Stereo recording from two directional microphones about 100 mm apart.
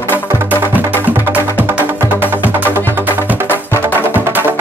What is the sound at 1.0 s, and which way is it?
Music, 15° right (ahead or behind).